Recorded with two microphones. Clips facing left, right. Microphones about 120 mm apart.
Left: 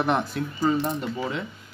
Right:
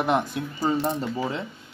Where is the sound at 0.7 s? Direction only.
30° right (ahead or behind).